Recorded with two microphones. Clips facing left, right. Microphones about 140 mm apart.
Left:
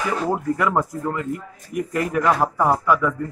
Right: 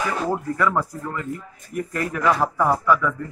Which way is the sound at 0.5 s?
20° left (ahead or behind).